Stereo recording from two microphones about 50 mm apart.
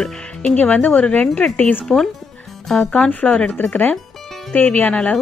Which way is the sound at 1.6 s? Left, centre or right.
Left.